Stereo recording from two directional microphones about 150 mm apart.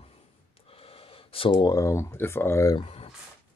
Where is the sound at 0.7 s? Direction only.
40° left (ahead or behind).